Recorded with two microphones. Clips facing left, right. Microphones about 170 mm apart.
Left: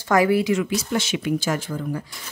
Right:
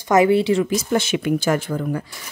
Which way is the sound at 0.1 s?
25° right (ahead or behind).